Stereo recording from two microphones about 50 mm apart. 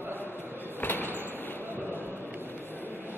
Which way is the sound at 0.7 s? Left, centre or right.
Left.